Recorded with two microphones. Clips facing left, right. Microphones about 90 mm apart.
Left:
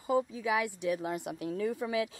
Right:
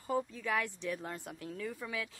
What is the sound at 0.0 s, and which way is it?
Speech, 10° left (ahead or behind).